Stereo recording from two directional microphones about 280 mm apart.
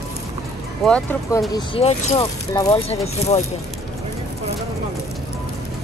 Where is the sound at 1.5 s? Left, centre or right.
Centre.